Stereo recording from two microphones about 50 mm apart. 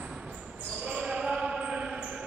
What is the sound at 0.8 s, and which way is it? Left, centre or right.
Basketball bounce, centre.